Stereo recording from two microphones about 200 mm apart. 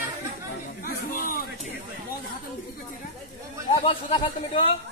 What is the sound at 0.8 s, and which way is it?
Chatter, 45° left (ahead or behind).